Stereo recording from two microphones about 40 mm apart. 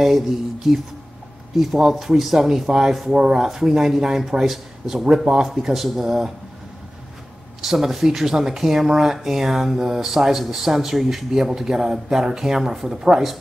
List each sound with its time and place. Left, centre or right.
0.0 s speech: centre
3.4 s speech: centre
7.6 s speech: centre